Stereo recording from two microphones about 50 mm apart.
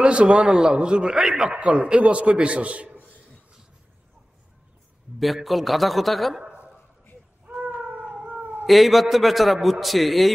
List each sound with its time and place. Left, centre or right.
0.0 s a man's voice: centre
5.2 s a man's voice: centre
6.4 s a sound: right
8.6 s a man's voice: centre